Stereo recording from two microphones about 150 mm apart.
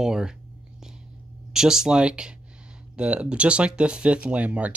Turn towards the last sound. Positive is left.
turn(degrees=-10)  # may be behind; listen again after turning